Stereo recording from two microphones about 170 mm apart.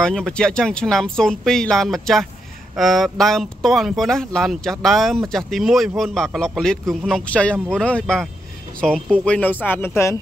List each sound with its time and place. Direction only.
0.0 s speech: 5° left (ahead or behind)